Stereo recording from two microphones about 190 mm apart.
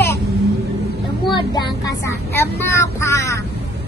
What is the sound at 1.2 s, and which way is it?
Speech, 25° left (ahead or behind).